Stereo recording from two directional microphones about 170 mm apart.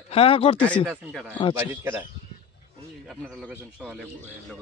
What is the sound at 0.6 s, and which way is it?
Speech, 10° left (ahead or behind).